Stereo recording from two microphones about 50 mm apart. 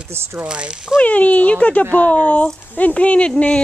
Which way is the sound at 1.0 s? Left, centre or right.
Left.